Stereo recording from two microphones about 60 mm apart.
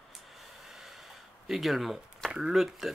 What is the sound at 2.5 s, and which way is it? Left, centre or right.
Speech, centre.